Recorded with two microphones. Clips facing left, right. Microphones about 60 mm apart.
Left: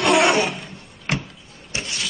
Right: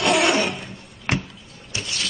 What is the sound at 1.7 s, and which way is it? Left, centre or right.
Vehicle, left.